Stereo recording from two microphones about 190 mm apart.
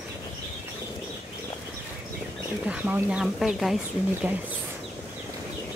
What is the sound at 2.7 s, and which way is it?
Speech, 5° right (ahead or behind).